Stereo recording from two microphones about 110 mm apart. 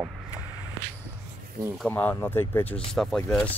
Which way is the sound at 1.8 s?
15° left (ahead or behind).